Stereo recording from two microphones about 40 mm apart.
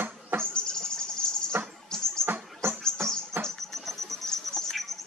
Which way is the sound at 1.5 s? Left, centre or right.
Right.